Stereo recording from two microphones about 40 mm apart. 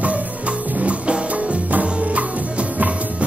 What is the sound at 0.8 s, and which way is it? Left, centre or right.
Music, right.